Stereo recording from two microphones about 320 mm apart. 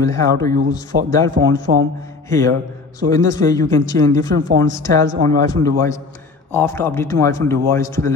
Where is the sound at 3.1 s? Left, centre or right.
Centre.